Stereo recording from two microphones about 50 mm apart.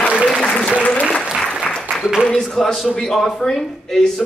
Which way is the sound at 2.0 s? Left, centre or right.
Centre.